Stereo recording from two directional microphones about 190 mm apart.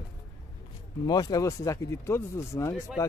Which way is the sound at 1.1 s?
20° left (ahead or behind).